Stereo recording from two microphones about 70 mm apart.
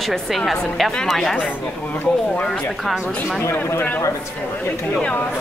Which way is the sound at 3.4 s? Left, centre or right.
Left.